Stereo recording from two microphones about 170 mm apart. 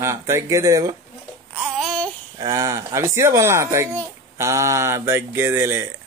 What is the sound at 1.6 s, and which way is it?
Babbling, centre (ahead or behind).